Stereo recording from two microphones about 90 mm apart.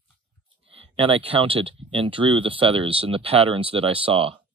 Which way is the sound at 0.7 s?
90° right.